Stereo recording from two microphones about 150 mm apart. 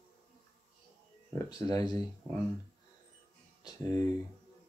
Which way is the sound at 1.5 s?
25° left (ahead or behind).